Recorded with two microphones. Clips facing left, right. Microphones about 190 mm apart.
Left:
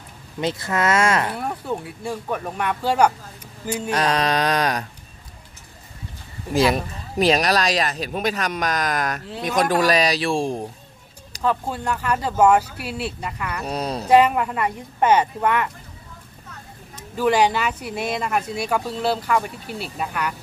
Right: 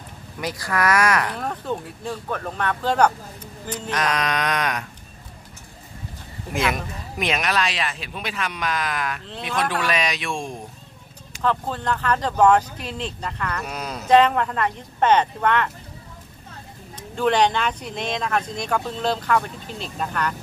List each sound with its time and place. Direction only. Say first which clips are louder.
0.4 s speech: left 2 dB; 25° left (ahead or behind)
1.3 s speech: left 1 dB; 10° left (ahead or behind)
3.9 s speech: left 3 dB; 30° left (ahead or behind)
6.5 s speech: left 5 dB; 35° left (ahead or behind)
11.4 s speech: left 1 dB; 10° left (ahead or behind)
13.7 s speech: left 6 dB; 30° left (ahead or behind)
14.0 s speech: even; 10° left (ahead or behind)
17.1 s speech: left 1 dB; 5° left (ahead or behind)